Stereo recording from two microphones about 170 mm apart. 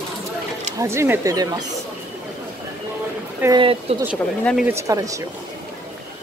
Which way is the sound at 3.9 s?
35° right (ahead or behind).